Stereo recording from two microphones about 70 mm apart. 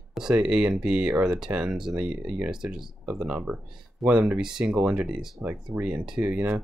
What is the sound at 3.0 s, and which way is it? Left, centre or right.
Speech, centre.